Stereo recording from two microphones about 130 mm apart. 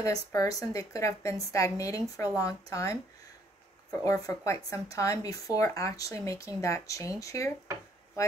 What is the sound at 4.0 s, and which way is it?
Speech, 25° left (ahead or behind).